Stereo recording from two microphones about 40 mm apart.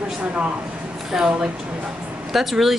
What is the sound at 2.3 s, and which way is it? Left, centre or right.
Speech, centre.